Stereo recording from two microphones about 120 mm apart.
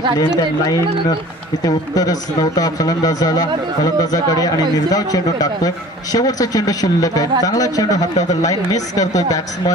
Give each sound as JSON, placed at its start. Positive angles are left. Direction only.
{"t": 0.2, "sound": "speech", "side_deg": 35}